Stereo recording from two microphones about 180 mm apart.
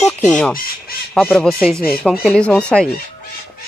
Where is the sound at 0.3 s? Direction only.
5° left (ahead or behind).